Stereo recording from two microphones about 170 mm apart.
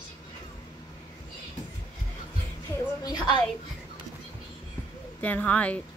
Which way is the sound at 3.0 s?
25° left (ahead or behind).